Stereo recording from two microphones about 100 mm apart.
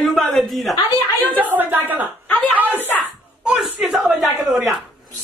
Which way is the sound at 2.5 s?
15° right (ahead or behind).